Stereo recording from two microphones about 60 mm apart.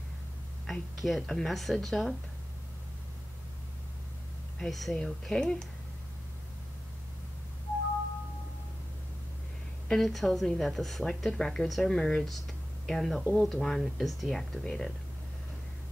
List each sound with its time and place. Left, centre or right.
0.7 s a woman's voice: centre
4.6 s a woman's voice: centre
9.8 s a woman's voice: centre